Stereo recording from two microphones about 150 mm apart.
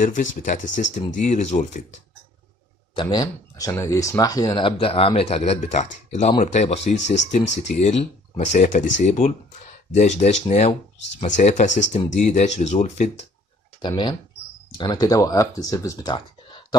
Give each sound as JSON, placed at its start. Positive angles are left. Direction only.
{"t": 0.0, "sound": "speech", "side_deg": 60}
{"t": 3.0, "sound": "speech", "side_deg": 25}
{"t": 13.7, "sound": "speech", "side_deg": 30}